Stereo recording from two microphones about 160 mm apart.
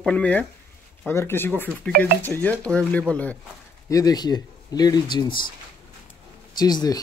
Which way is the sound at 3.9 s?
20° left (ahead or behind).